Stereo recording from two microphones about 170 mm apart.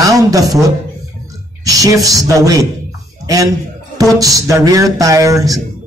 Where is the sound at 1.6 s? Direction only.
20° right (ahead or behind).